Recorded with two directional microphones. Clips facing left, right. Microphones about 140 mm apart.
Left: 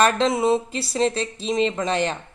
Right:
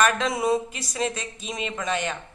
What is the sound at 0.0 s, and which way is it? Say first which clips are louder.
Speech: left 4 dB; 30° left (ahead or behind).